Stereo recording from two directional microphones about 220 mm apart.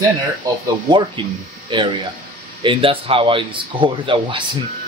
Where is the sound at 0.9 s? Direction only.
20° right (ahead or behind).